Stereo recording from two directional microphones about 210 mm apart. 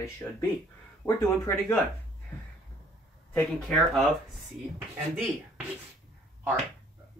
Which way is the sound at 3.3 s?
Centre (ahead or behind).